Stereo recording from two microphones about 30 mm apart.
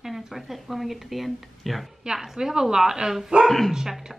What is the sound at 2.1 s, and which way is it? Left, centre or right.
A woman's voice, centre.